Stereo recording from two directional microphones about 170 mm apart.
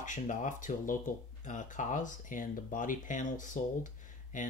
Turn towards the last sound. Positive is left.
turn(degrees=50)  # may be behind; listen again after turning